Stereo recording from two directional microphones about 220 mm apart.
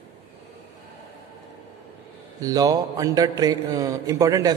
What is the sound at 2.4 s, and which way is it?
A man's voice, 15° right (ahead or behind).